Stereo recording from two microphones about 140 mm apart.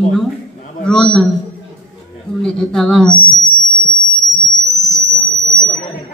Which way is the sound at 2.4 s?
5° left (ahead or behind).